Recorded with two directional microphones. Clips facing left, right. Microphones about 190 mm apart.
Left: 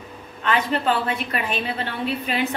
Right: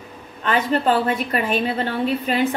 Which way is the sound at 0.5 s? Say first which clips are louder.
Right 3 dB; 40° right (ahead or behind).